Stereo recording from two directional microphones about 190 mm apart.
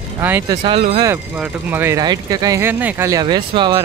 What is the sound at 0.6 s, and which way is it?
Speech, 30° right (ahead or behind).